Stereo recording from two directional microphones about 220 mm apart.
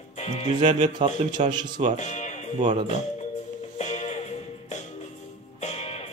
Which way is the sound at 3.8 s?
30° left (ahead or behind).